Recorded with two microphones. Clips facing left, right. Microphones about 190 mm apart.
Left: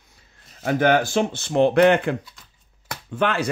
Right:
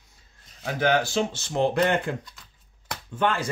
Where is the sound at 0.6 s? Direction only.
55° left (ahead or behind).